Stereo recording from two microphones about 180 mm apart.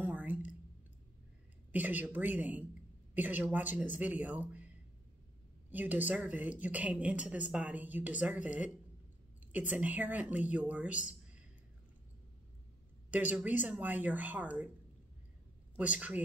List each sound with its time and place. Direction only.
0.0 s a sound: 10° right (ahead or behind)
1.7 s speech: 10° right (ahead or behind)
5.7 s speech: 10° right (ahead or behind)
13.1 s speech: 10° right (ahead or behind)
15.8 s speech: 5° right (ahead or behind)